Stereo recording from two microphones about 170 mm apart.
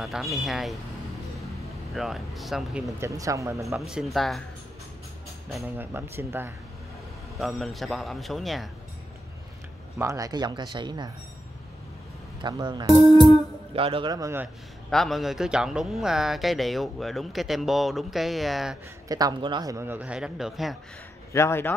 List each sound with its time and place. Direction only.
0.0 s speech: centre (ahead or behind)
2.0 s speech: centre (ahead or behind)
3.0 s speech: 20° right (ahead or behind)
3.9 s speech: centre (ahead or behind)
5.6 s a man's voice: 15° right (ahead or behind)
7.3 s speech: centre (ahead or behind)
9.9 s speech: 20° right (ahead or behind)
12.4 s speech: 25° right (ahead or behind)
12.9 s speech: 25° left (ahead or behind)
13.7 s speech: 30° right (ahead or behind); by 14.5 s 15° right (ahead or behind)
14.9 s speech: centre (ahead or behind)
19.0 s a man's voice: 20° right (ahead or behind); by 20.7 s centre (ahead or behind)
21.3 s speech: 15° left (ahead or behind)